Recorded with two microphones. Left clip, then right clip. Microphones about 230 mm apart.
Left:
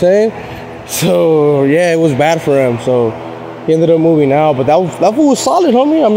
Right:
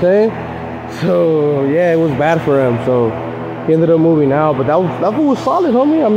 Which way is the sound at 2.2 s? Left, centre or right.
Left.